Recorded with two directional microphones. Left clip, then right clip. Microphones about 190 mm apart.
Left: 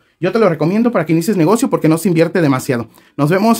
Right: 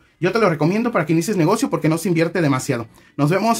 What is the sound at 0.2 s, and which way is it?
Speech, 30° left (ahead or behind).